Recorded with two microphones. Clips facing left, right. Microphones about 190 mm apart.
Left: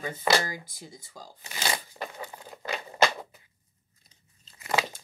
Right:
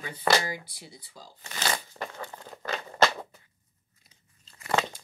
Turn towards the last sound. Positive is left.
turn(degrees=5)  # may be behind; listen again after turning